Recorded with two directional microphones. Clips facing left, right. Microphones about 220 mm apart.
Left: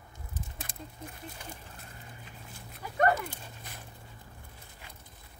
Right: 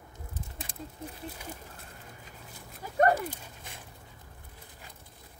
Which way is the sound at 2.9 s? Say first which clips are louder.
Right 2 dB; 35° right (ahead or behind).